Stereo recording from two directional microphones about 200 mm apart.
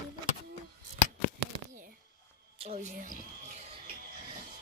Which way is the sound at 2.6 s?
35° right (ahead or behind).